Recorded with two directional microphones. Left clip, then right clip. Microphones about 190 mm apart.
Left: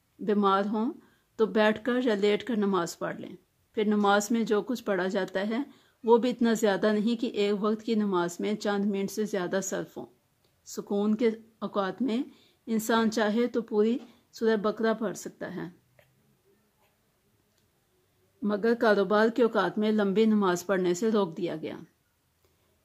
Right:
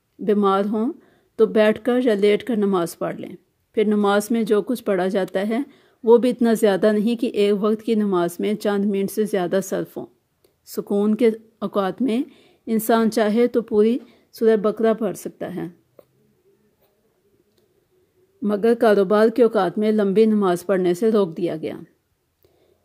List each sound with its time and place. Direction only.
0.2 s speech: 25° right (ahead or behind)
18.4 s speech: 30° right (ahead or behind)